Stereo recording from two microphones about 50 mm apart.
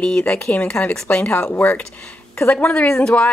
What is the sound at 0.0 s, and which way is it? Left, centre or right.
Speech, centre.